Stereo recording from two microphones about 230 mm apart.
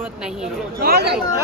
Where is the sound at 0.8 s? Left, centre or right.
Right.